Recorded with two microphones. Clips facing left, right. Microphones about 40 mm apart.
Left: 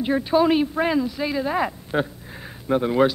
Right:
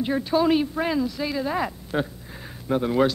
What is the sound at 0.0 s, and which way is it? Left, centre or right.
Speech, centre.